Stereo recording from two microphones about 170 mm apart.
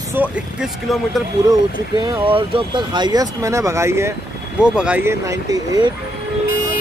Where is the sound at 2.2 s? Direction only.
30° right (ahead or behind).